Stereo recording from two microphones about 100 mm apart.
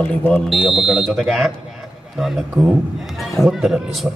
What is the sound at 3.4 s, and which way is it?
Speech, 5° right (ahead or behind).